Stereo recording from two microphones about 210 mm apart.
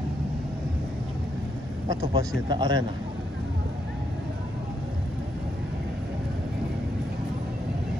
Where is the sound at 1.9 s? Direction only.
15° right (ahead or behind).